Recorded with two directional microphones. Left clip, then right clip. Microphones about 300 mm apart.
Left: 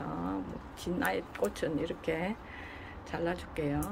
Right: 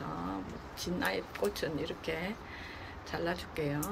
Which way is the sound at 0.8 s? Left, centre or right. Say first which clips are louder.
Left 2 dB; centre.